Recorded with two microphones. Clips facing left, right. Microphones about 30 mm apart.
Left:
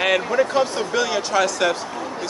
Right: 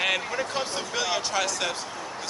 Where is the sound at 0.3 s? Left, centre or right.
Left.